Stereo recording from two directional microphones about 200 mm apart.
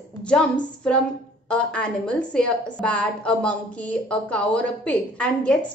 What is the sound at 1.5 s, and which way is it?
A woman's voice, 5° left (ahead or behind).